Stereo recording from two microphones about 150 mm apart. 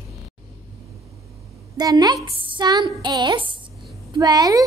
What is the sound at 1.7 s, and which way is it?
A woman's voice, 25° right (ahead or behind).